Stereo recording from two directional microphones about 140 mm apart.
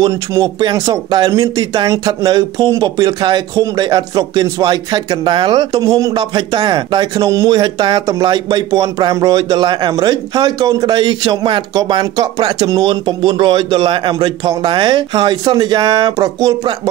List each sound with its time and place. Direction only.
0.0 s speech: 25° right (ahead or behind)